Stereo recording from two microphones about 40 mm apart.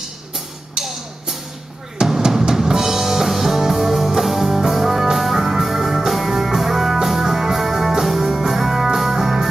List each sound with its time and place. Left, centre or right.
0.8 s music: centre
2.0 s drum: centre
8.3 s music: centre